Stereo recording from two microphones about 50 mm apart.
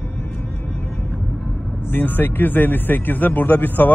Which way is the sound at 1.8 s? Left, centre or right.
Left.